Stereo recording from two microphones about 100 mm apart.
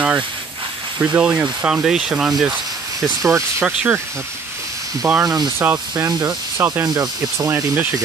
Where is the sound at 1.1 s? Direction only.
10° right (ahead or behind).